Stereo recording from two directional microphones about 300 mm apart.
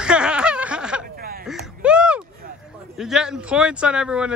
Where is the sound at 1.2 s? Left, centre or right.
Right.